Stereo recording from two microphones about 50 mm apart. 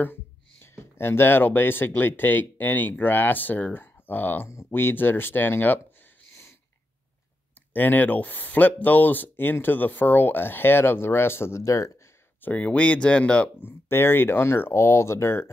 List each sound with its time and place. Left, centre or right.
0.0 s a sound: left
2.0 s speech: left
7.7 s speech: left
12.4 s speech: left
13.6 s speech: left